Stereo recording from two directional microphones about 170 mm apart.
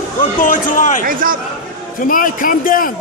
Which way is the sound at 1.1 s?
55° right (ahead or behind).